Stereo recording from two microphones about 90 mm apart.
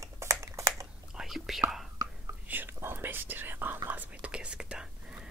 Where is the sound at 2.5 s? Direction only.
20° right (ahead or behind).